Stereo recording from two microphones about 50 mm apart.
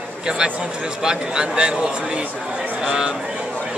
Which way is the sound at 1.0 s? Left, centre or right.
Centre.